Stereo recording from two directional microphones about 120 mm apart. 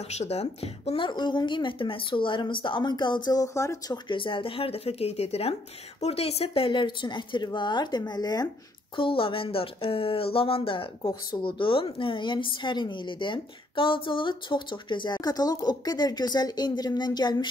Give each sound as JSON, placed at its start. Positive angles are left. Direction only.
{"t": 0.1, "sound": "a woman's voice", "side_deg": 65}
{"t": 4.1, "sound": "speech", "side_deg": 45}
{"t": 8.9, "sound": "a woman's voice", "side_deg": 45}